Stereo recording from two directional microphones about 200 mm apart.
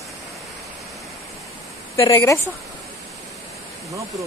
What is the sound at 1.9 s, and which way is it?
Speech, 15° left (ahead or behind).